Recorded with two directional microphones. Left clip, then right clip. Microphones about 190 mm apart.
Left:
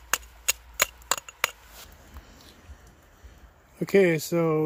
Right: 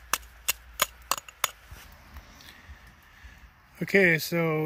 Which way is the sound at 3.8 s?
5° left (ahead or behind).